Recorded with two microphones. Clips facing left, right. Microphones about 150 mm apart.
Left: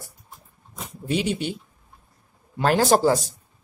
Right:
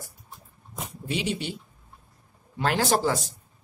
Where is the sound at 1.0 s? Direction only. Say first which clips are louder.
Left 5 dB; 50° left (ahead or behind).